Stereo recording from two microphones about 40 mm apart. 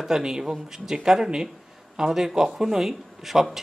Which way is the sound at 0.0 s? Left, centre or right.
Centre.